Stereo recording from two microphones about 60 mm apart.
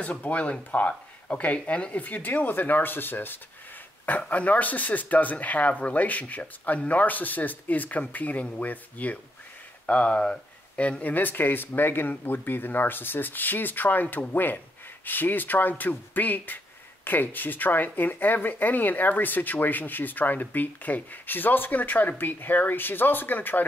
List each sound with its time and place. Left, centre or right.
0.0 s speech: left